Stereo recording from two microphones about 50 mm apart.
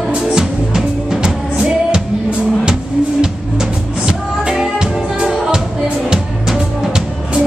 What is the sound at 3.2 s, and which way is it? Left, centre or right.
Music, centre.